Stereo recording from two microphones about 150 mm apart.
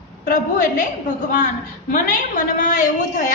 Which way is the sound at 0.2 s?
65° left (ahead or behind).